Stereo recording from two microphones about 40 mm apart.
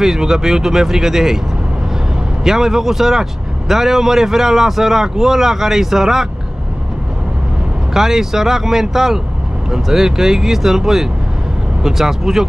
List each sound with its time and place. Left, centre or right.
0.0 s speech: centre
2.4 s speech: centre
7.9 s speech: centre